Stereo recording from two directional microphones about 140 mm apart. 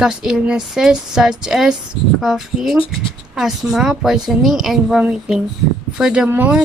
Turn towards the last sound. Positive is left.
turn(degrees=-10)  # may be behind; listen again after turning